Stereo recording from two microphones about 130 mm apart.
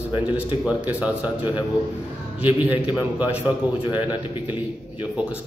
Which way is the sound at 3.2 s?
10° right (ahead or behind).